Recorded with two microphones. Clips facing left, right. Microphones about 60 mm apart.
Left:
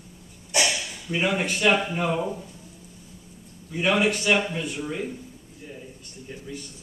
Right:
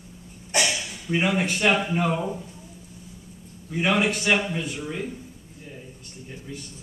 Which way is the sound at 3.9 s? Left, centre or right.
Centre.